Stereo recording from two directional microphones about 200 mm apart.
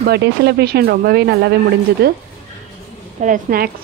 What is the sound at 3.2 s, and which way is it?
Speech, 45° right (ahead or behind).